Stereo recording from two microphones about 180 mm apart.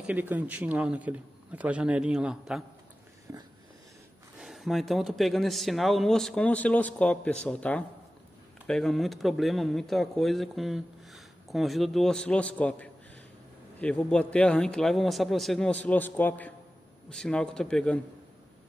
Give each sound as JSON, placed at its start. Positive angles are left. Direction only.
{"t": 0.0, "sound": "a man's voice", "side_deg": -10}
{"t": 3.3, "sound": "a sound", "side_deg": -15}
{"t": 4.4, "sound": "speech", "side_deg": 0}